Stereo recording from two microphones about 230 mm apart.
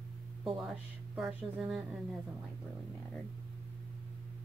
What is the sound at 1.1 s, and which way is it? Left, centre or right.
Speech, centre.